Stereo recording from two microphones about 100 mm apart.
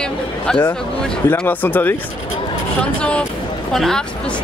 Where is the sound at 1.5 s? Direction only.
20° left (ahead or behind).